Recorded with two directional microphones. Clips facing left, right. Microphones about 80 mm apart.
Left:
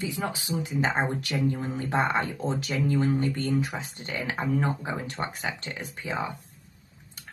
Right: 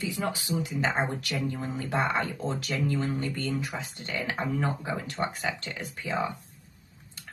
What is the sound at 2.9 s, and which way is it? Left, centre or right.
Speech, left.